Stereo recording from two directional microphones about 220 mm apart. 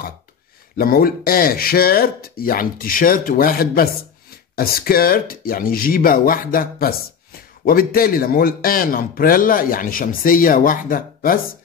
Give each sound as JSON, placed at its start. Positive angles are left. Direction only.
{"t": 0.7, "sound": "speech", "side_deg": 40}